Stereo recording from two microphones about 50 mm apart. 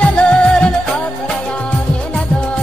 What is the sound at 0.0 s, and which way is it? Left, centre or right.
Music, left.